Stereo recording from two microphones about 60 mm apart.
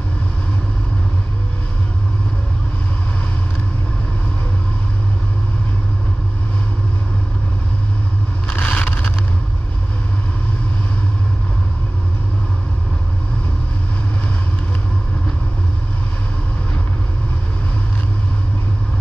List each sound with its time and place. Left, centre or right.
8.5 s vehicle: left